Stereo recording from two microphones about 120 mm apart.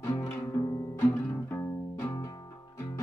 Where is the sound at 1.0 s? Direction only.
20° left (ahead or behind).